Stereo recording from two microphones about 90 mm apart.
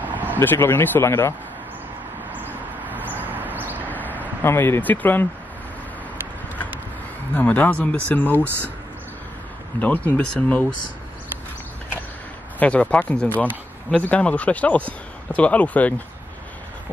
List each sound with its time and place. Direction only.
0.0 s vehicle: 20° right (ahead or behind)
0.4 s speech: 25° left (ahead or behind)
2.3 s a sound: 20° right (ahead or behind)
3.9 s a sound: 20° left (ahead or behind)
4.4 s speech: 25° left (ahead or behind)
7.3 s speech: 15° left (ahead or behind)
9.8 s speech: 20° left (ahead or behind)
12.5 s speech: 15° left (ahead or behind)